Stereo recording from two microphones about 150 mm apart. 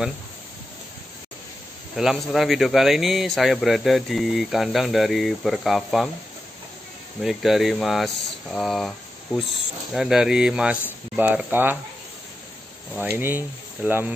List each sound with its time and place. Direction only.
2.0 s a man's voice: centre (ahead or behind)
7.2 s a man's voice: centre (ahead or behind)
12.9 s speech: 10° right (ahead or behind)